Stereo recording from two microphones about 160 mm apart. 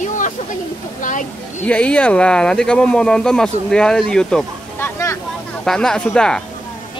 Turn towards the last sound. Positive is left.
turn(degrees=5)  # may be behind; listen again after turning